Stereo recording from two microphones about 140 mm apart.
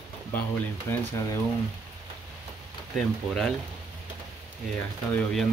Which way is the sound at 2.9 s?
Centre (ahead or behind).